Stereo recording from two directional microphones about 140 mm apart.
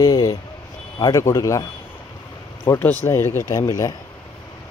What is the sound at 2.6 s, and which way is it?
Speech, 15° left (ahead or behind).